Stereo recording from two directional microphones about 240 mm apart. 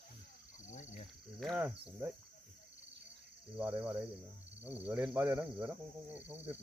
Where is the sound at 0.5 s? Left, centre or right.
Left.